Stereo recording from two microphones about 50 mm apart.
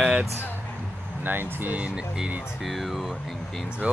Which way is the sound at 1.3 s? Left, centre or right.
Right.